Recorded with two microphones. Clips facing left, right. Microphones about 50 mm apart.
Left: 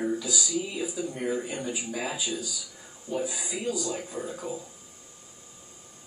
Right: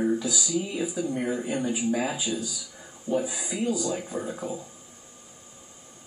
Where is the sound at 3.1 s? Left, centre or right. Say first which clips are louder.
Right 4 dB; centre.